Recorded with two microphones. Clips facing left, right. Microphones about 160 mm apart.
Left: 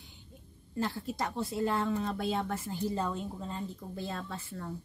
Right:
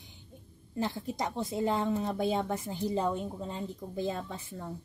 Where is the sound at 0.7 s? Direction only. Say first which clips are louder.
Right 1 dB; 20° right (ahead or behind).